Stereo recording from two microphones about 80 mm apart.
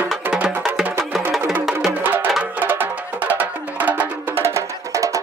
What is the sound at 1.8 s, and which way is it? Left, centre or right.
Music, right.